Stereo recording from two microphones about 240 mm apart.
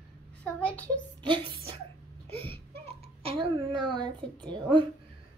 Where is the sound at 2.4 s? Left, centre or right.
Right.